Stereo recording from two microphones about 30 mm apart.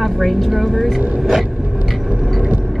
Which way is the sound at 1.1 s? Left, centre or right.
Centre.